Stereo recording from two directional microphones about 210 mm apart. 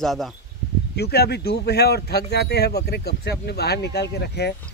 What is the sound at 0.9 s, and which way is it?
Speech, 50° left (ahead or behind).